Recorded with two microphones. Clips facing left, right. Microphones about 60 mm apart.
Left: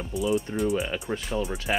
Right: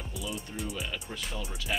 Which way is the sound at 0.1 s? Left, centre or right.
Left.